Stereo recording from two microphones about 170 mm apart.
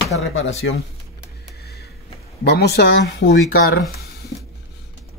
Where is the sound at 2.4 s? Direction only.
75° left (ahead or behind).